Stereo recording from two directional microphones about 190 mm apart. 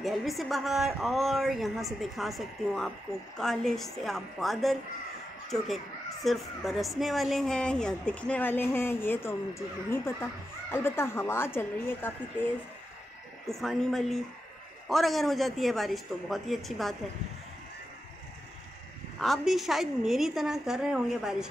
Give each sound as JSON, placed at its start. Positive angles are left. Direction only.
{"t": 0.0, "sound": "a woman's voice", "side_deg": 0}
{"t": 6.2, "sound": "speech", "side_deg": 0}
{"t": 13.5, "sound": "a woman's voice", "side_deg": 0}
{"t": 19.1, "sound": "a woman's voice", "side_deg": 0}